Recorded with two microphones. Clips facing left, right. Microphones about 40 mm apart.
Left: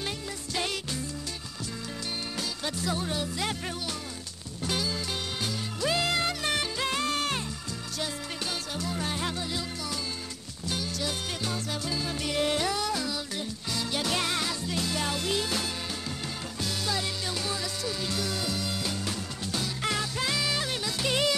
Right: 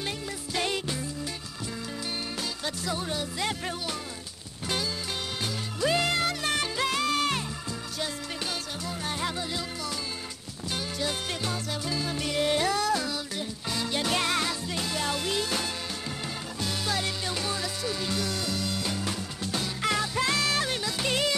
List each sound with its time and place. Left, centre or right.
0.6 s music: centre
2.6 s speech: centre
4.6 s music: centre
6.2 s music: centre
9.0 s music: centre
10.8 s music: centre
11.5 s music: centre